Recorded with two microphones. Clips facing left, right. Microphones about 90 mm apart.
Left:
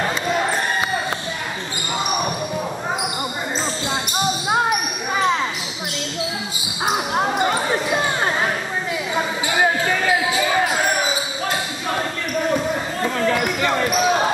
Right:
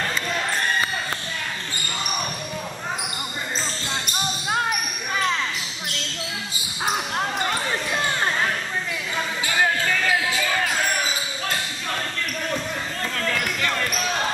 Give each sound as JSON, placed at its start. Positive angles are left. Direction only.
{"t": 0.0, "sound": "basketball bounce", "side_deg": 20}
{"t": 5.1, "sound": "basketball bounce", "side_deg": 20}
{"t": 7.3, "sound": "basketball bounce", "side_deg": 20}
{"t": 7.9, "sound": "a sound", "side_deg": 15}
{"t": 9.1, "sound": "basketball bounce", "side_deg": 20}